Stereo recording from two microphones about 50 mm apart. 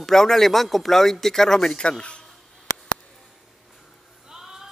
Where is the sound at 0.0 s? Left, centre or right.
Centre.